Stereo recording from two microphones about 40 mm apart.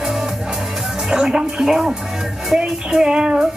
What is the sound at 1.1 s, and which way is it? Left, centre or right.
Speech, right.